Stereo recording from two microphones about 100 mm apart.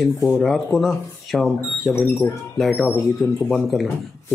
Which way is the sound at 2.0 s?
25° left (ahead or behind).